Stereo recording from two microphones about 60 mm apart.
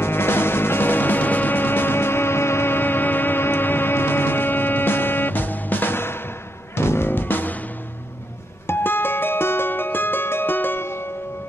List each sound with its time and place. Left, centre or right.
0.0 s music: left
8.6 s music: left